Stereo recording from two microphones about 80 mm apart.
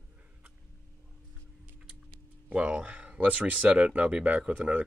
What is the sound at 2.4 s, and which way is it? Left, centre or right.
Speech, centre.